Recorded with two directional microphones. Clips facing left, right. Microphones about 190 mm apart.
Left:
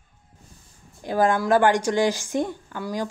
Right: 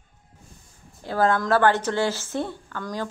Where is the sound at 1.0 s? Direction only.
15° left (ahead or behind).